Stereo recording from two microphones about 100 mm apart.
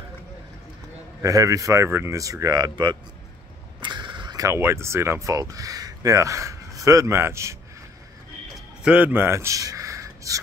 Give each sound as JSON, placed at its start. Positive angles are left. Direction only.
{"t": 1.2, "sound": "speech", "side_deg": -35}
{"t": 3.8, "sound": "a sound", "side_deg": -50}
{"t": 4.4, "sound": "speech", "side_deg": -30}
{"t": 8.8, "sound": "speech", "side_deg": -15}